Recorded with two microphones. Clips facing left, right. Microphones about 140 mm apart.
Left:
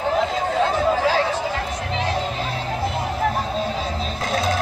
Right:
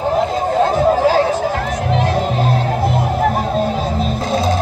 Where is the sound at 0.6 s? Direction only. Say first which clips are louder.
Right 6 dB; 40° right (ahead or behind).